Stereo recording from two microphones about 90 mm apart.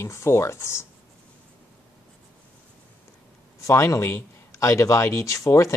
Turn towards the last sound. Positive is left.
turn(degrees=35)  # may be behind; listen again after turning